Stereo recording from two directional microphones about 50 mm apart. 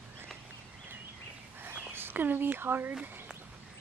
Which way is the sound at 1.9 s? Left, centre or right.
Right.